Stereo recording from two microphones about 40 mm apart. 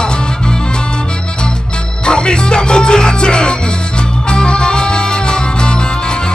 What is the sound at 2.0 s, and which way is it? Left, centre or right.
Music, left.